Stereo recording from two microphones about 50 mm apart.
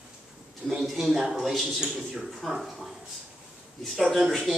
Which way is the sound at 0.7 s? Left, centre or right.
Centre.